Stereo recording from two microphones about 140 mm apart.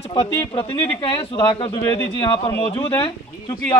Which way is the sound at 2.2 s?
20° left (ahead or behind).